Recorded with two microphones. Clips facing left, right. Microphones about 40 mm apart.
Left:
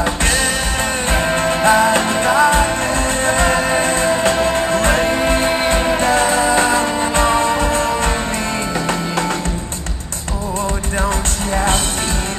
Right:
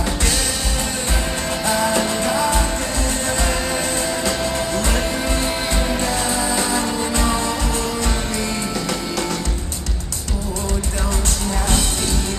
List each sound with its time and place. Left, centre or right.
0.0 s music: left
11.5 s music: left